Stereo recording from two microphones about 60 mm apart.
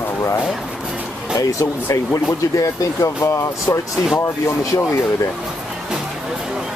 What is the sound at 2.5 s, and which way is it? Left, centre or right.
Speech, left.